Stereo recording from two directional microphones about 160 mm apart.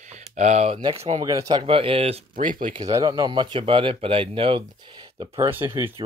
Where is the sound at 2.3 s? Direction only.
55° right (ahead or behind).